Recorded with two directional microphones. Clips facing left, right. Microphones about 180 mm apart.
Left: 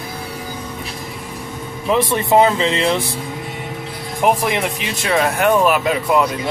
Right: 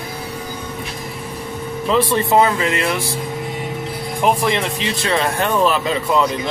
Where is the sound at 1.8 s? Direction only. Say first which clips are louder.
Even; 15° left (ahead or behind).